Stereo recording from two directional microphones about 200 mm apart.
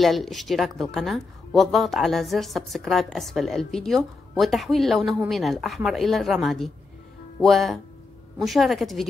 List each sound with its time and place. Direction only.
0.0 s a woman's voice: centre (ahead or behind)